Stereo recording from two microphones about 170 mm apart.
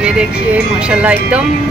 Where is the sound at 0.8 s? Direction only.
5° right (ahead or behind).